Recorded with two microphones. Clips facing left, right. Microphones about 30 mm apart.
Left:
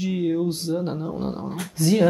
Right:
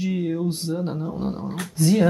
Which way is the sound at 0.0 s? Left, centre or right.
Centre.